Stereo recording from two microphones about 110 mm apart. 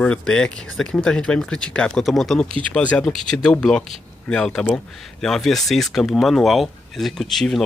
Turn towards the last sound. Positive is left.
turn(degrees=0)  # may be behind; listen again after turning